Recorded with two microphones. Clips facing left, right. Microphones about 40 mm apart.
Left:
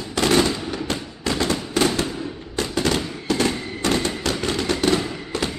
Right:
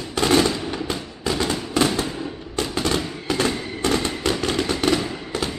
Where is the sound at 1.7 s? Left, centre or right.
Centre.